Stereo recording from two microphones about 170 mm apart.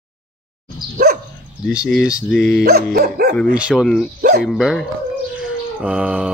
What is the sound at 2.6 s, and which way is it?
Dog, 65° right (ahead or behind).